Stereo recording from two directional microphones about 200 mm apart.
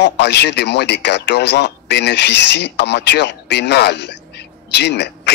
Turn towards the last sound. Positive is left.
turn(degrees=55)  # may be behind; listen again after turning